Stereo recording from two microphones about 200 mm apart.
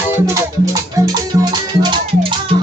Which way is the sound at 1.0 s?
20° right (ahead or behind).